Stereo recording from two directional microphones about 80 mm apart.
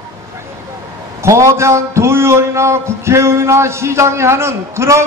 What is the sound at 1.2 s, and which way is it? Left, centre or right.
A man's voice, right.